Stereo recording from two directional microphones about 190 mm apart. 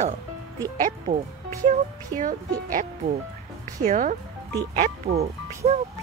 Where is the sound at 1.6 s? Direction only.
45° right (ahead or behind).